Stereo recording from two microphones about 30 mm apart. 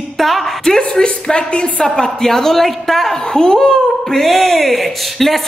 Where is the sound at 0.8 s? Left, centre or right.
Left.